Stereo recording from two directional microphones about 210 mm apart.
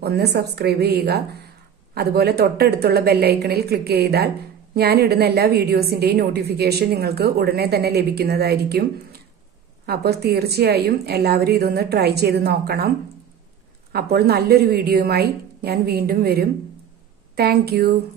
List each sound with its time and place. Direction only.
0.0 s a woman's voice: 50° right (ahead or behind)
13.9 s a woman's voice: 50° right (ahead or behind)